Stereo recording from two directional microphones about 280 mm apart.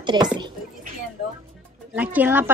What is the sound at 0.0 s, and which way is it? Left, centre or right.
Speech, centre.